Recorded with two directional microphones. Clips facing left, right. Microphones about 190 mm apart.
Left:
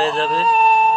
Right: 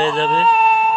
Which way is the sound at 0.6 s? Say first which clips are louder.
Left 1 dB; 40° left (ahead or behind).